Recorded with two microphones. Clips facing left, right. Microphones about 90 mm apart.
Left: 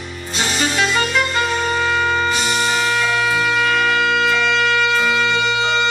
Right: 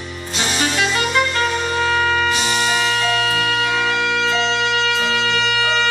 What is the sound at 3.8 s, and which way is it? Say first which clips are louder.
Wind instrument: left 2 dB; 25° right (ahead or behind).